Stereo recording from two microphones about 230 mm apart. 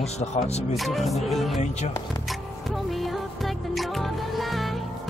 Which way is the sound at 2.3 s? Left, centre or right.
Centre.